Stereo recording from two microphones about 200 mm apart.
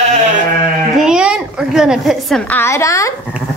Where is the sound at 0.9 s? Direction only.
5° right (ahead or behind).